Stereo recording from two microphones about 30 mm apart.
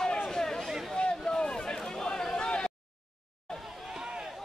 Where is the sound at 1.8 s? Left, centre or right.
Centre.